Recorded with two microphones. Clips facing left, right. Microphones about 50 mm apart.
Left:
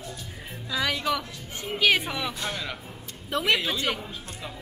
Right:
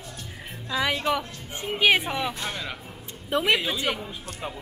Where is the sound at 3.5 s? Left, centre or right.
Centre.